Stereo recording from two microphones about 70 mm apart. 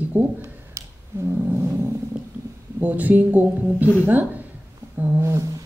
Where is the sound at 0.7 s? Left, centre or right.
Right.